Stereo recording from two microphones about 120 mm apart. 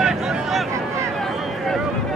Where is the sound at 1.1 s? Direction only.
Centre (ahead or behind).